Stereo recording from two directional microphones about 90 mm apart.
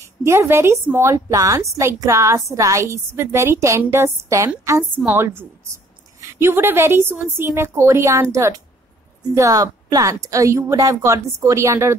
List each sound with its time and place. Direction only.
0.2 s a woman's voice: 30° right (ahead or behind)
6.2 s a woman's voice: 25° right (ahead or behind)